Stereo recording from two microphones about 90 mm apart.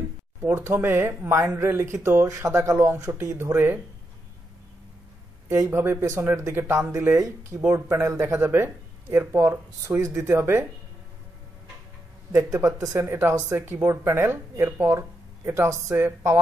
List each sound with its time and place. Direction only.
0.4 s speech: 30° right (ahead or behind)
5.5 s speech: 30° right (ahead or behind)
12.3 s speech: 35° right (ahead or behind)